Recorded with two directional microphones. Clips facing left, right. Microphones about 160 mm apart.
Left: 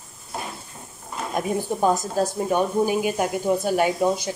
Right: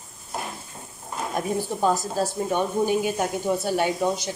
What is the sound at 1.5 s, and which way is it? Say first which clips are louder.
Speech: left 2 dB; 15° left (ahead or behind).